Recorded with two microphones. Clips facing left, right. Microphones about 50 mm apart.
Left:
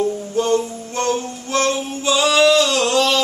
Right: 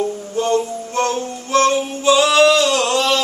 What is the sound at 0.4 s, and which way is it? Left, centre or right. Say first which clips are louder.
Music: right 1 dB; centre.